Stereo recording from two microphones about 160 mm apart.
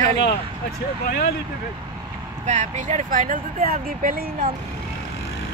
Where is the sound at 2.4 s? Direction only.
50° right (ahead or behind).